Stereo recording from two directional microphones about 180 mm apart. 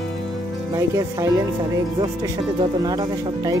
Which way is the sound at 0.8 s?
15° right (ahead or behind).